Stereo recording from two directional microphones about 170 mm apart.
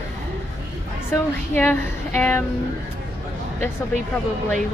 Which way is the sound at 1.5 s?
10° left (ahead or behind).